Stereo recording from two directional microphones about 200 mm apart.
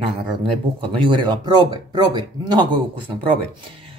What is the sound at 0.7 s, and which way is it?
Speech, 25° right (ahead or behind).